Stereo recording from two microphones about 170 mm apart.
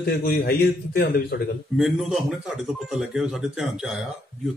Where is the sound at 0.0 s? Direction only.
65° left (ahead or behind).